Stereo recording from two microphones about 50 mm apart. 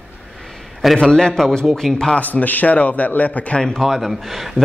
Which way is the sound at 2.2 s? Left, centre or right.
Left.